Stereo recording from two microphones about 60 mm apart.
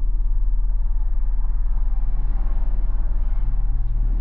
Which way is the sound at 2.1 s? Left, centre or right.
Right.